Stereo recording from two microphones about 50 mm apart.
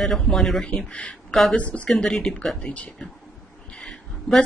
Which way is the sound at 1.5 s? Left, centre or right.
Left.